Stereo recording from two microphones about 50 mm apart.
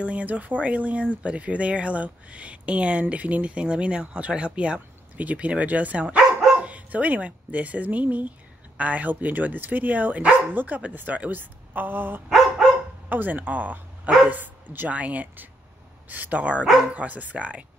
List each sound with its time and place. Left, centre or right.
0.0 s speech: right
14.9 s speech: right